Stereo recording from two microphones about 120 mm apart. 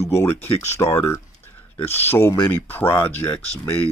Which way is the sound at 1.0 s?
20° left (ahead or behind).